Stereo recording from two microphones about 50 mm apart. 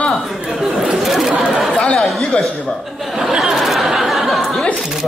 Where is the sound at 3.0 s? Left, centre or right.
Centre.